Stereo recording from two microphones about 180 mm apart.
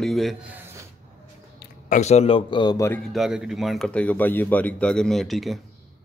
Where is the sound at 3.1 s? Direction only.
Centre (ahead or behind).